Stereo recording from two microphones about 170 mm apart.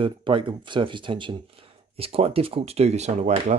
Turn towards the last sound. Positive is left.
turn(degrees=-40)  # may be behind; listen again after turning